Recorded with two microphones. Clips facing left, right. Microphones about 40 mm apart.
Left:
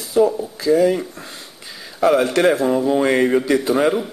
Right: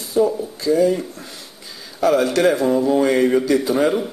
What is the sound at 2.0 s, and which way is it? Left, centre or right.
Speech, left.